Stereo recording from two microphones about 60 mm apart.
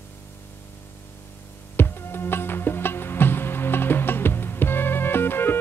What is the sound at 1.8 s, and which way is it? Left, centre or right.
Music, left.